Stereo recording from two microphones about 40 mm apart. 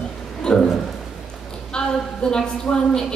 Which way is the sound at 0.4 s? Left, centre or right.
Left.